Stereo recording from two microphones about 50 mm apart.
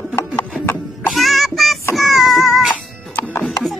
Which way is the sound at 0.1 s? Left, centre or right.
Left.